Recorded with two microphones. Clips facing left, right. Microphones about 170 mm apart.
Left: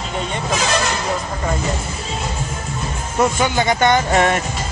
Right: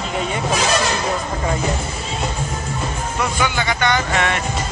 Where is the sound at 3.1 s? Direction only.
45° left (ahead or behind).